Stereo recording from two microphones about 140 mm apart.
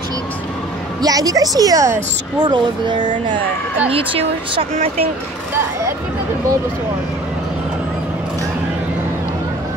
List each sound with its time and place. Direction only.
1.0 s a woman's voice: 25° right (ahead or behind); by 4.9 s 45° right (ahead or behind)